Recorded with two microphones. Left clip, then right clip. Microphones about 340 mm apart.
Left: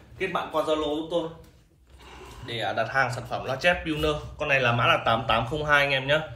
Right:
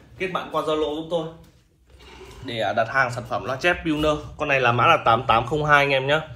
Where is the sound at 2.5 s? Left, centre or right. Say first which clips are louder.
Right 4 dB; centre.